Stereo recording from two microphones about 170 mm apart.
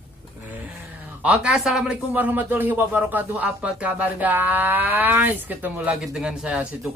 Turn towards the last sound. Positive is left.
turn(degrees=-5)  # may be behind; listen again after turning